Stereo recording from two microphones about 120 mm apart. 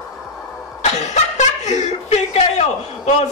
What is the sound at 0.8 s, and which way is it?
Chuckle, 70° left (ahead or behind).